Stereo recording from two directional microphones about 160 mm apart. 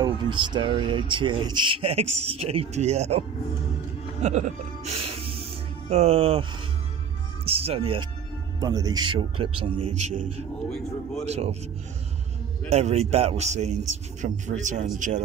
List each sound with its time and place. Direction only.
0.0 s a sound: 30° right (ahead or behind)
0.7 s speech: 30° right (ahead or behind)
7.4 s speech: 35° right (ahead or behind)
8.5 s speech: 25° right (ahead or behind); by 10.2 s 45° right (ahead or behind)
11.2 s speech: 40° right (ahead or behind)
12.6 s a man's voice: 40° right (ahead or behind)